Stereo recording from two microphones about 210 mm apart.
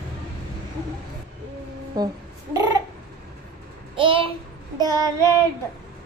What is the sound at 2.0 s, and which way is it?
Child singing, 20° right (ahead or behind).